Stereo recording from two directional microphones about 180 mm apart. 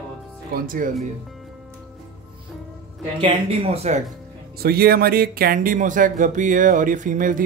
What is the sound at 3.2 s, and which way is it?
Speech, 30° right (ahead or behind).